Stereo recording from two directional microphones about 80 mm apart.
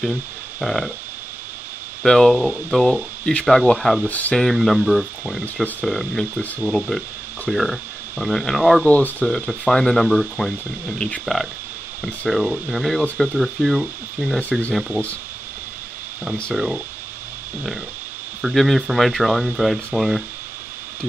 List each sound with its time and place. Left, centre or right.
0.6 s speech: centre
2.0 s speech: centre
4.1 s speech: left
4.4 s speech: centre
5.4 s speech: centre
5.9 s speech: centre
7.4 s speech: centre
8.8 s speech: centre
9.2 s speech: centre
16.5 s speech: centre
18.4 s speech: centre